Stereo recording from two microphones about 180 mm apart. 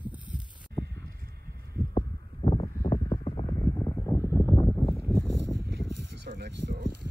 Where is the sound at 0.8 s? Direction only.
60° right (ahead or behind).